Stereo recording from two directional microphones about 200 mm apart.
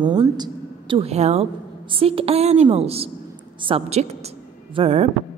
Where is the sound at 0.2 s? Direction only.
25° right (ahead or behind).